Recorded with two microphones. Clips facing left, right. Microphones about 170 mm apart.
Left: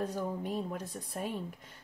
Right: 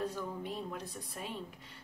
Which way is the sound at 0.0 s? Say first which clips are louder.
Left 3 dB; 45° left (ahead or behind).